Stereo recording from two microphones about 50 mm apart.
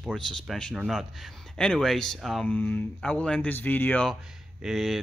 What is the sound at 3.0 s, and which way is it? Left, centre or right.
Speech, left.